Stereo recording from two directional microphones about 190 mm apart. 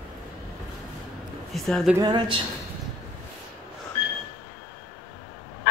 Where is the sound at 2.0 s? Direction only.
20° right (ahead or behind).